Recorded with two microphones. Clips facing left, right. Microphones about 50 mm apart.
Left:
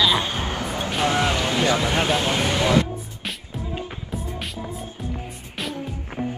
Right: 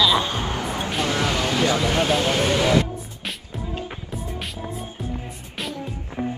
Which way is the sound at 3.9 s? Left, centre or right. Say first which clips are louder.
Even; centre.